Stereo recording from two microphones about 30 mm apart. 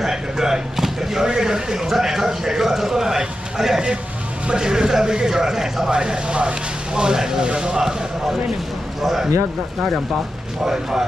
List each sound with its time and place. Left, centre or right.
0.0 s a sound: centre
1.3 s a man's voice: right
5.9 s speech: right
7.4 s speech: right
9.0 s a man's voice: centre
10.6 s a man's voice: centre